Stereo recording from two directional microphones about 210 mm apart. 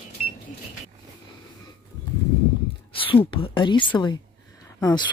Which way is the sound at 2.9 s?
25° left (ahead or behind).